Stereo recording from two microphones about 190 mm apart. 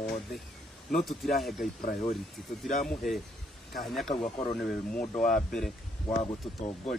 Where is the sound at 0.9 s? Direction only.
Centre (ahead or behind).